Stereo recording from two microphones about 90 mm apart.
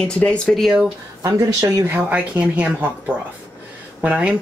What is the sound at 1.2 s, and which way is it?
Speech, 40° right (ahead or behind).